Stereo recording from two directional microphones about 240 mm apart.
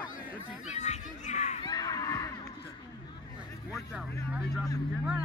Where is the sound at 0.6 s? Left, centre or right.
Left.